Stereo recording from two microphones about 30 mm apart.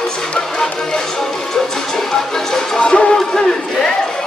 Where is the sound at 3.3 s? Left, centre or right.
Left.